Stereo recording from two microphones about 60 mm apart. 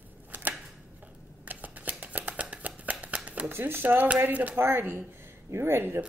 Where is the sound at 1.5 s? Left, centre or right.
Right.